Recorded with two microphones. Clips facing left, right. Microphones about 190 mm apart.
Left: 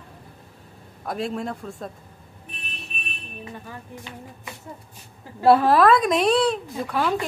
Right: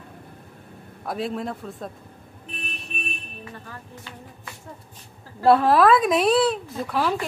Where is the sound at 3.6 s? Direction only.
15° left (ahead or behind).